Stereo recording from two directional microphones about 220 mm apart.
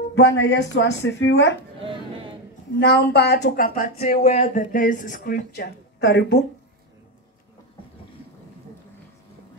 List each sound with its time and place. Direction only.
0.1 s speech: 50° left (ahead or behind)
2.8 s speech: 50° left (ahead or behind)